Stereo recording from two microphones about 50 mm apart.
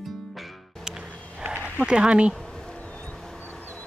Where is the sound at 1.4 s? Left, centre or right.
Right.